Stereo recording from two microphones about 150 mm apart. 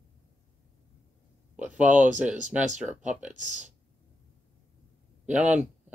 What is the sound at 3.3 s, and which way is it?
Speech, 55° right (ahead or behind).